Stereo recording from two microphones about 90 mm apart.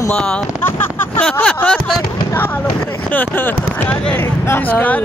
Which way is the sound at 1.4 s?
15° left (ahead or behind).